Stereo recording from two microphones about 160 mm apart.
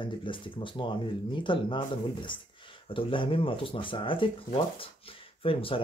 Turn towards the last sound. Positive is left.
turn(degrees=35)  # may be behind; listen again after turning